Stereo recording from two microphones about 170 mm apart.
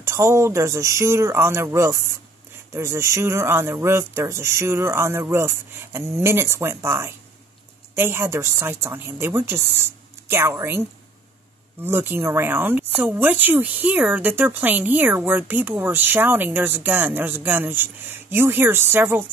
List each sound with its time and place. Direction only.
0.0 s speech: 15° right (ahead or behind)